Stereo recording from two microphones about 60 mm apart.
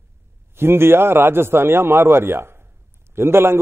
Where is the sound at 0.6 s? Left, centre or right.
Right.